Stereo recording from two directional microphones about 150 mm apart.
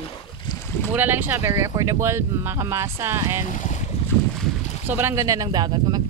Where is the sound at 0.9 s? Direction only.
10° right (ahead or behind).